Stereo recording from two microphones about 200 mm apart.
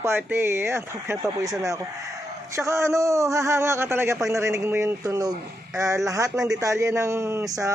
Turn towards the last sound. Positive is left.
turn(degrees=-15)  # may be behind; listen again after turning